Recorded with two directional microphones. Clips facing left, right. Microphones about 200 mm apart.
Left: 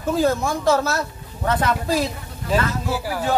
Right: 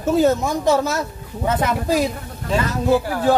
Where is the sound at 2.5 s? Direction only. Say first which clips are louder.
Right 4 dB; 5° left (ahead or behind).